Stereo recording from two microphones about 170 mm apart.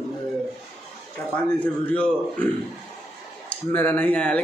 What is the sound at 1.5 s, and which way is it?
Speech, 10° left (ahead or behind).